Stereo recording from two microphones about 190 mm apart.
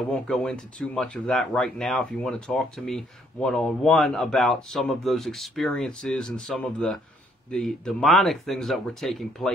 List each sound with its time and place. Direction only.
0.1 s speech: 5° left (ahead or behind)